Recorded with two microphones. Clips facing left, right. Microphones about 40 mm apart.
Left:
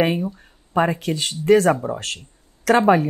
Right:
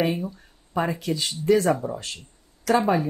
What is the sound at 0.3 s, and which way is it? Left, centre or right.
Speech, left.